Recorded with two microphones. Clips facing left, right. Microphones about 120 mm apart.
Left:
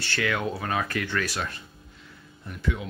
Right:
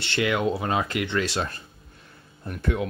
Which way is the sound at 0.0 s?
20° right (ahead or behind).